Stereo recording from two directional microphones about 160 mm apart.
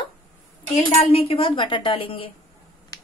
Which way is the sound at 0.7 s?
45° left (ahead or behind).